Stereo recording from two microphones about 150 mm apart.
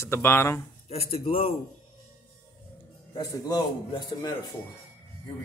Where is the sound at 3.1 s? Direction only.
25° left (ahead or behind).